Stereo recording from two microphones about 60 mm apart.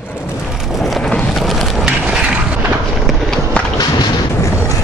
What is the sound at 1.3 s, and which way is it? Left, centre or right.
Skateboard, centre.